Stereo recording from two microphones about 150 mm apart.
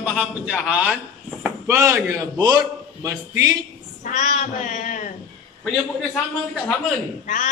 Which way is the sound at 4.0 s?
55° left (ahead or behind).